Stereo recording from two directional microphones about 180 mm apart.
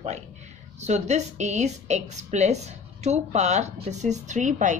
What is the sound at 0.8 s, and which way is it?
A woman's voice, 40° right (ahead or behind).